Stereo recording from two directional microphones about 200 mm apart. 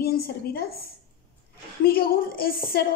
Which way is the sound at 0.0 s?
50° left (ahead or behind).